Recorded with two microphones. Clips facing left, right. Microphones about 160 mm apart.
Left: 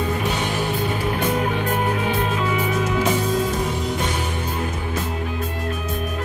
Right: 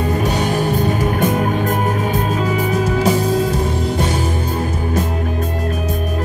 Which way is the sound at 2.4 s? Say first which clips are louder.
Right 4 dB; 40° right (ahead or behind).